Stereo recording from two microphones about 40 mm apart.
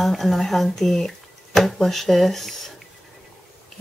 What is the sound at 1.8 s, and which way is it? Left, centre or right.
Speech, centre.